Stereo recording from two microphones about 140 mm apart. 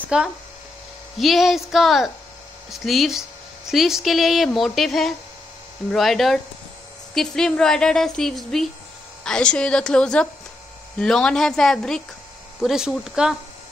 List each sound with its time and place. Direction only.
0.1 s a woman's voice: 5° right (ahead or behind)